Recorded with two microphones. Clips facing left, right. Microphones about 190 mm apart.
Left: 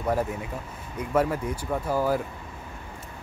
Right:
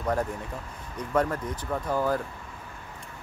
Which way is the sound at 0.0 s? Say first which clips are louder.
Left 2 dB; 10° left (ahead or behind).